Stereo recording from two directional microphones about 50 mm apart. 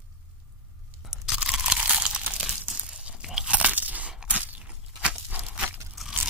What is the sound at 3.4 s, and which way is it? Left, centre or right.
Crunch, right.